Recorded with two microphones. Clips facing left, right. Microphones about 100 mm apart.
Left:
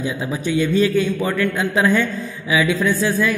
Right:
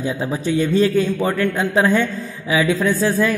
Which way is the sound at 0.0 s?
35° right (ahead or behind).